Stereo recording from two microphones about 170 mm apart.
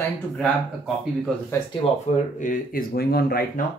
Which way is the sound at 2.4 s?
55° left (ahead or behind).